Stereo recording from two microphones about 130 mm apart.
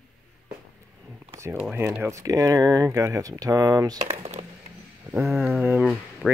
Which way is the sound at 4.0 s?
55° right (ahead or behind).